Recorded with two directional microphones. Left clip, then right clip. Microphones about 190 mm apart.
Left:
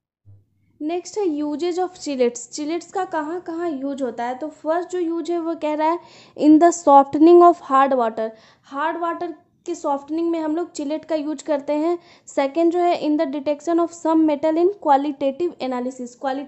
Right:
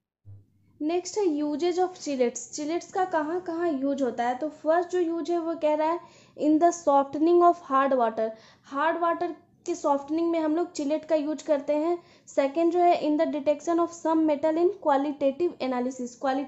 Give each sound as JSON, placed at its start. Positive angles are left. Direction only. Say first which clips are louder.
{"t": 0.8, "sound": "a woman's voice", "louder": "left 3 dB", "side_deg": 15}